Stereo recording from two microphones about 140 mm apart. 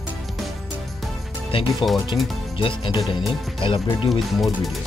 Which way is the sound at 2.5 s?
35° left (ahead or behind).